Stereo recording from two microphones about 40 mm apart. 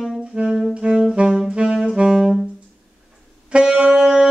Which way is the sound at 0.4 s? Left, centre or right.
Right.